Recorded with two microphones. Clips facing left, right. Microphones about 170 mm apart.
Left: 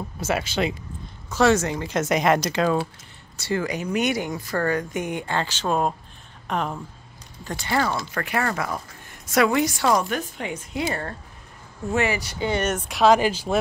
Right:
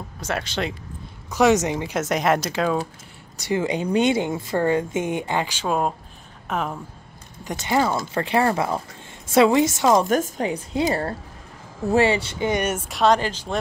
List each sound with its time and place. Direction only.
0.2 s speech: 5° left (ahead or behind)
1.3 s speech: 15° right (ahead or behind)
2.0 s speech: centre (ahead or behind)
3.3 s speech: 15° right (ahead or behind)
3.6 s speech: 30° right (ahead or behind); by 6.8 s 5° right (ahead or behind)
7.4 s speech: 20° right (ahead or behind)
10.0 s a woman's voice: 45° right (ahead or behind); by 13.6 s 10° left (ahead or behind)